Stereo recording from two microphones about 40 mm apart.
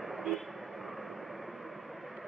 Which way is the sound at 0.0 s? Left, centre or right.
Centre.